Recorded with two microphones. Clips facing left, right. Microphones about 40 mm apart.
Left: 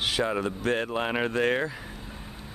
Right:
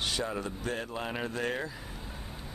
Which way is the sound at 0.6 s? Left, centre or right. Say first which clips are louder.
Left 8 dB; left.